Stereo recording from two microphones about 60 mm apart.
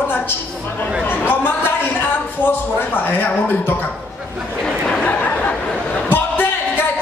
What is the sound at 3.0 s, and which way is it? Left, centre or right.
Speech, left.